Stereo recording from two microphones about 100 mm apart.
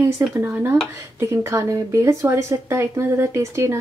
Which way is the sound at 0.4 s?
25° right (ahead or behind).